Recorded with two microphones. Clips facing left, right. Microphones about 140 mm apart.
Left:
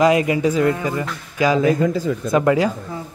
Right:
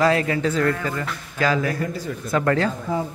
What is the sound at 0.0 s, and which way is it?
Speech, 15° left (ahead or behind).